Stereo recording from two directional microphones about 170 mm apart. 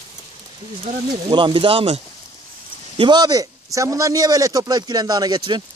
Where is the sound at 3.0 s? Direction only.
25° right (ahead or behind).